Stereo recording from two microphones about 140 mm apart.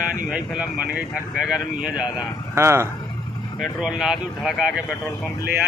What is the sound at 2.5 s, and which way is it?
Speech, 20° right (ahead or behind).